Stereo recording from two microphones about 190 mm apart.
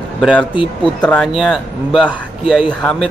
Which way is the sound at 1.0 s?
5° left (ahead or behind).